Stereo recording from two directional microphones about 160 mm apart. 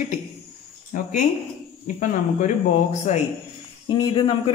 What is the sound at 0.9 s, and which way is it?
Speech, 60° left (ahead or behind).